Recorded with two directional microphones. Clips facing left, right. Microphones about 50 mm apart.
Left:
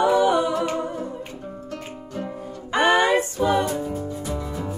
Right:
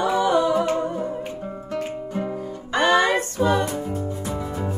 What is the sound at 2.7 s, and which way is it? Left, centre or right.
Music, left.